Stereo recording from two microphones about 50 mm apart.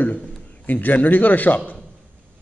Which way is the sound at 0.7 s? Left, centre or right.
Left.